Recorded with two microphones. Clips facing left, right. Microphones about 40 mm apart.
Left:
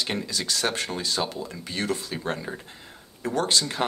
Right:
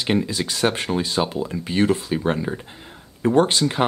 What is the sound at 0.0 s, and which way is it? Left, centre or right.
Speech, right.